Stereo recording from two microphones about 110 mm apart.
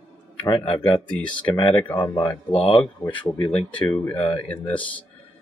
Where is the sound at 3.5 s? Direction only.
10° left (ahead or behind).